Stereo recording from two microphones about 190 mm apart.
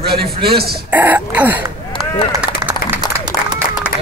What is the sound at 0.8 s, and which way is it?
Speech, 10° right (ahead or behind).